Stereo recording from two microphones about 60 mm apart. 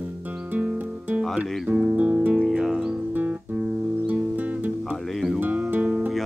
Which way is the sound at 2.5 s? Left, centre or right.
Centre.